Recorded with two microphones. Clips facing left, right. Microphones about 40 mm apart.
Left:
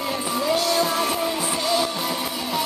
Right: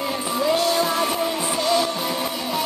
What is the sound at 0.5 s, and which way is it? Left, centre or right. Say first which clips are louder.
Music: right 1 dB; centre.